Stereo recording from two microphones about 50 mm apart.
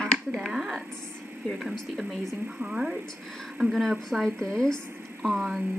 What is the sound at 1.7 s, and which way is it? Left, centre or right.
Speech, centre.